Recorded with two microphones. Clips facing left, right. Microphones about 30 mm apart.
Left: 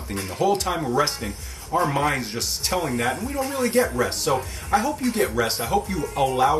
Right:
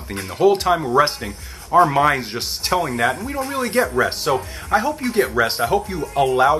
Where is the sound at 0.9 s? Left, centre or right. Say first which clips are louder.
Right 6 dB; right.